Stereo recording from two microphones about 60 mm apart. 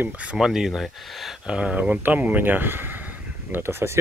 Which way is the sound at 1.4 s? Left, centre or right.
Centre.